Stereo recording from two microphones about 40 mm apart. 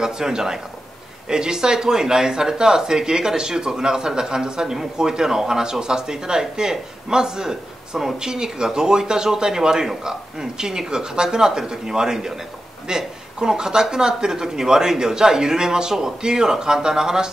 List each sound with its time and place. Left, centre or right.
0.0 s speech: centre